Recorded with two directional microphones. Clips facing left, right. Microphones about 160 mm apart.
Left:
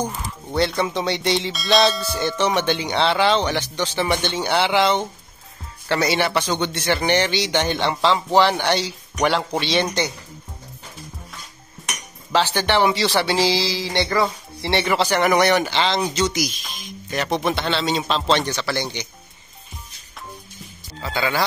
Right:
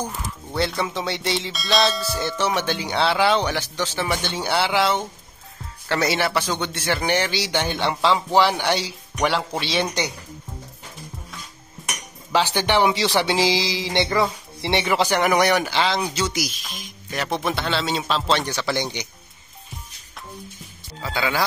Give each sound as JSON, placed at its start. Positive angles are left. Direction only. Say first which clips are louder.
{"t": 0.6, "sound": "music", "louder": "left 3 dB", "side_deg": 0}
{"t": 8.4, "sound": "speech", "louder": "left 3 dB", "side_deg": -10}
{"t": 9.2, "sound": "music", "louder": "left 2 dB", "side_deg": 0}
{"t": 11.8, "sound": "dishes", "louder": "even", "side_deg": 0}
{"t": 12.3, "sound": "speech", "louder": "left 1 dB", "side_deg": -15}
{"t": 17.1, "sound": "music", "louder": "left 3 dB", "side_deg": -5}
{"t": 21.0, "sound": "speech", "louder": "left 1 dB", "side_deg": -10}